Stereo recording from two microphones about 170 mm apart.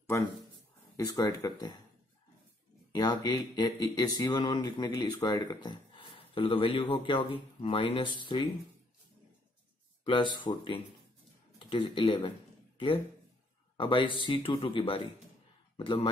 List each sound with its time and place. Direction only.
0.0 s speech: 15° left (ahead or behind)
2.9 s speech: 25° left (ahead or behind)
10.0 s speech: 30° left (ahead or behind)
13.7 s speech: 30° left (ahead or behind)